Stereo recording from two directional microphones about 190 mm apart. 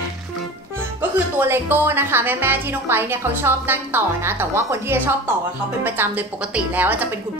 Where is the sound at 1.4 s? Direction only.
10° right (ahead or behind).